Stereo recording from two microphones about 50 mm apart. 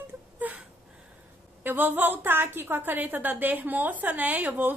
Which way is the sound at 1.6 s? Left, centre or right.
Right.